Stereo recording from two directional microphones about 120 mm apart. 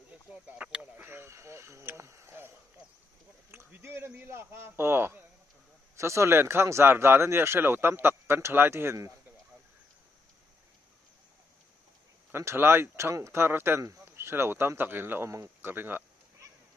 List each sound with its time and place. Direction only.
0.3 s speech: 10° right (ahead or behind)
3.5 s speech: 20° right (ahead or behind)
12.3 s speech: 20° right (ahead or behind)